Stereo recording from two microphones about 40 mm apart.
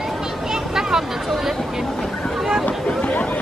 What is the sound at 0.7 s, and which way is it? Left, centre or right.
Chatter, centre.